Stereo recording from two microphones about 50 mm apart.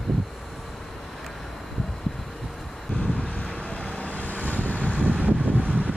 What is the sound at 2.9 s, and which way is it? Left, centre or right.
Wind, centre.